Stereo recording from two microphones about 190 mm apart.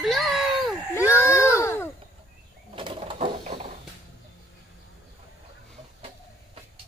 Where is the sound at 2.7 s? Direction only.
25° right (ahead or behind).